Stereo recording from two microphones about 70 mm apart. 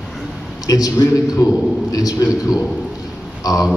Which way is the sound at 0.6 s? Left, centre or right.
Left.